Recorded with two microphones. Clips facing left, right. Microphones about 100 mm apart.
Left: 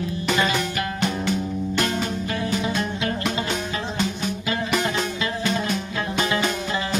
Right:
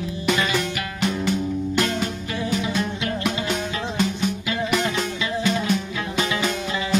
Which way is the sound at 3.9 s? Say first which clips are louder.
Right 5 dB; centre (ahead or behind).